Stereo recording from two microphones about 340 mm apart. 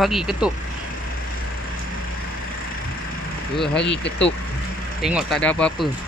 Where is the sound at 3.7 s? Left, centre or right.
Left.